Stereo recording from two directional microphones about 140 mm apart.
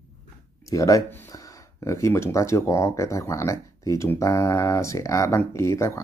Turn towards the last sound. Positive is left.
turn(degrees=20)  # may be behind; listen again after turning